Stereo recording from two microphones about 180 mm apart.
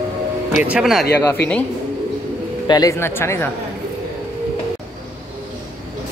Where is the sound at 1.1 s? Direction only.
10° left (ahead or behind).